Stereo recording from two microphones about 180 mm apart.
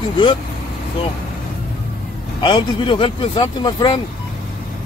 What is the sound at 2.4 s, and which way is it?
Speech, 25° left (ahead or behind).